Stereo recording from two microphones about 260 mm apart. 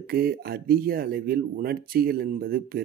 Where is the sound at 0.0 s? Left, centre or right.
Right.